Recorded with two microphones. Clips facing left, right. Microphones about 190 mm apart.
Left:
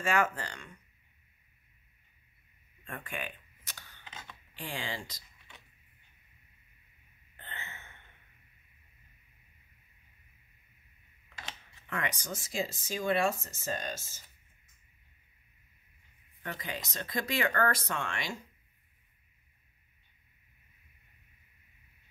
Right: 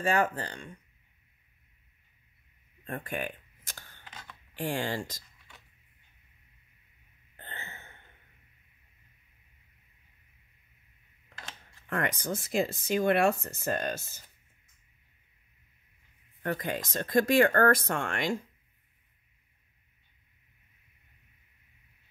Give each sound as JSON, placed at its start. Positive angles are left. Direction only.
{"t": 0.0, "sound": "speech", "side_deg": -35}
{"t": 2.8, "sound": "camera", "side_deg": -35}
{"t": 4.1, "sound": "a sound", "side_deg": 5}
{"t": 4.6, "sound": "speech", "side_deg": -45}
{"t": 7.3, "sound": "a sound", "side_deg": -35}
{"t": 11.2, "sound": "speech", "side_deg": -50}
{"t": 16.4, "sound": "speech", "side_deg": -50}